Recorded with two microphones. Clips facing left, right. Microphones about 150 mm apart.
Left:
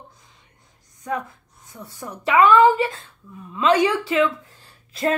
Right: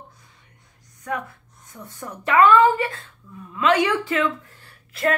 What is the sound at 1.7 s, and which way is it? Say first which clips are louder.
A woman's voice: left 1 dB; 10° left (ahead or behind).